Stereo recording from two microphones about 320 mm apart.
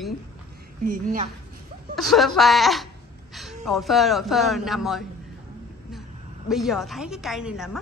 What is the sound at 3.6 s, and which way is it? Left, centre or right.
A woman's voice, centre.